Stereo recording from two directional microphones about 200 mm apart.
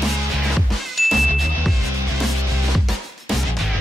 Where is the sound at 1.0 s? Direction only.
Centre (ahead or behind).